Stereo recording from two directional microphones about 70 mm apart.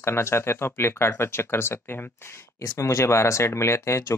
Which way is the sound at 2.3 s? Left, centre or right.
Left.